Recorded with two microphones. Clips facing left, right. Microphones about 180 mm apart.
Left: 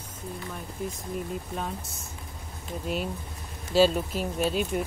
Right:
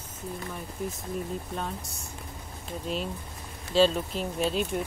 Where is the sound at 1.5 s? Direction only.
Centre (ahead or behind).